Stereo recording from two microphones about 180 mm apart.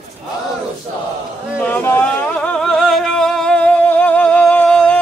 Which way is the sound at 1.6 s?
10° left (ahead or behind).